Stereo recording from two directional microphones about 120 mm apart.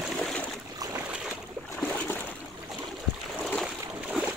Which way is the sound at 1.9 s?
15° left (ahead or behind).